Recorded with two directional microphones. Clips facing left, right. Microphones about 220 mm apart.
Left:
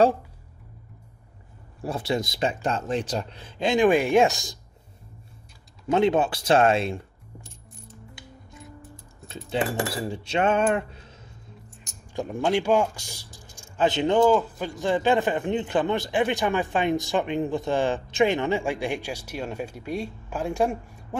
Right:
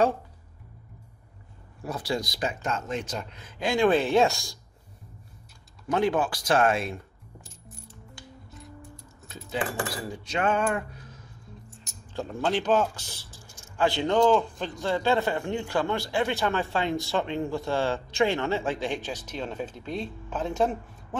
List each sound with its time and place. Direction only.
1.8 s speech: 25° left (ahead or behind)
5.9 s speech: 25° left (ahead or behind)
9.3 s speech: 30° left (ahead or behind)
10.1 s music: 25° left (ahead or behind)
12.1 s speech: 15° left (ahead or behind)
14.2 s speech: 5° left (ahead or behind)
14.8 s speech: 15° left (ahead or behind)